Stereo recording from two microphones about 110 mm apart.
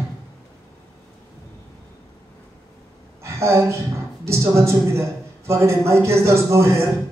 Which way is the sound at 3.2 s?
25° right (ahead or behind).